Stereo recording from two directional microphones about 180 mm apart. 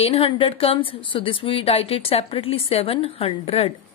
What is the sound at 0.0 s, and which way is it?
A woman's voice, 30° left (ahead or behind).